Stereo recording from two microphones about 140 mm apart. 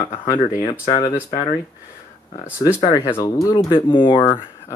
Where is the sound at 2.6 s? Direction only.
25° left (ahead or behind).